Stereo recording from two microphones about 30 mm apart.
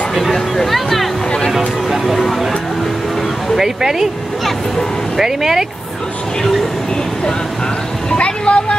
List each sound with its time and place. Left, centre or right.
0.7 s speech: centre
3.5 s speech: centre
5.1 s speech: centre
8.2 s vehicle: left